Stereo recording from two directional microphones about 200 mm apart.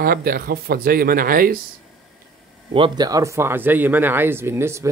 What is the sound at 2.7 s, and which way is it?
Speech, 25° right (ahead or behind).